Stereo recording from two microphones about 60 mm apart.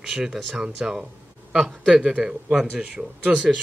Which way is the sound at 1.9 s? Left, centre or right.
Centre.